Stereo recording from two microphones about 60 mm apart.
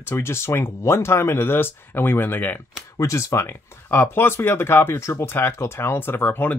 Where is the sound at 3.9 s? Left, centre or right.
Left.